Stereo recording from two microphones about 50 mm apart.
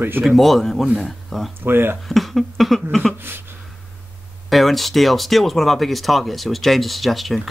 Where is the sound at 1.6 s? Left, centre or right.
Right.